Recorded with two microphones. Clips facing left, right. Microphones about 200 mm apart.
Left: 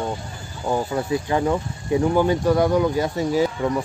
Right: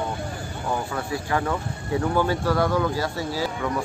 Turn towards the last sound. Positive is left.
turn(degrees=20)  # may be behind; listen again after turning